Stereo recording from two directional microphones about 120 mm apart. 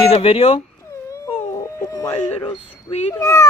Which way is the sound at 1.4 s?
25° left (ahead or behind).